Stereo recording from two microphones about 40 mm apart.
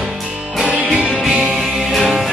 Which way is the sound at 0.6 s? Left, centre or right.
Right.